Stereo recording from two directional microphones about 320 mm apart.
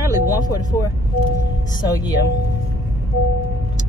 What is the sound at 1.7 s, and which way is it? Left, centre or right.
Speech, centre.